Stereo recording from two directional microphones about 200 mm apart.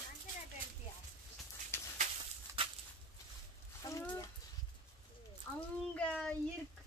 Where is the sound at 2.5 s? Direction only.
15° right (ahead or behind).